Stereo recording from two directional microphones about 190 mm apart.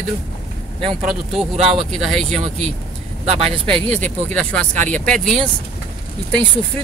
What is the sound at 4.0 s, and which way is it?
Speech, 5° left (ahead or behind).